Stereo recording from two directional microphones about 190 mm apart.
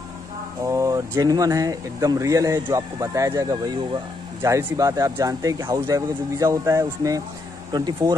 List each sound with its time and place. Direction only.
0.7 s speech: 15° right (ahead or behind)